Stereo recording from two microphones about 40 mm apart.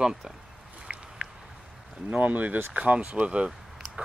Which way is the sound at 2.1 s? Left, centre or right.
Right.